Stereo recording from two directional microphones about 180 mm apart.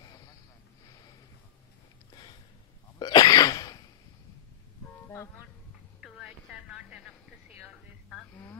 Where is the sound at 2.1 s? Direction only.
25° left (ahead or behind).